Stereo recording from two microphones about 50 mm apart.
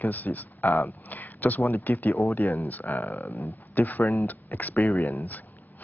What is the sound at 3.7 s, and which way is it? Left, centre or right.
Speech, left.